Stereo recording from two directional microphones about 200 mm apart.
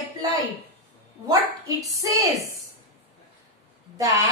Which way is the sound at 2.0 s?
15° right (ahead or behind).